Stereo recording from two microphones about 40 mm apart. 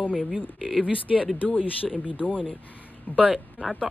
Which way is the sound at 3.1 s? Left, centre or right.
Left.